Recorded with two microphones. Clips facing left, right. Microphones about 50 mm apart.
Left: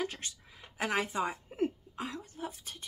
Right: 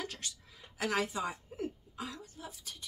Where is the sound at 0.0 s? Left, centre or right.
Left.